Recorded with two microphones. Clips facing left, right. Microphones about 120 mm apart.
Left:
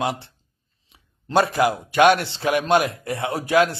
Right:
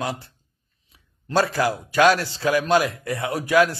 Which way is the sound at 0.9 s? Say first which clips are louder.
Left 2 dB; 25° left (ahead or behind).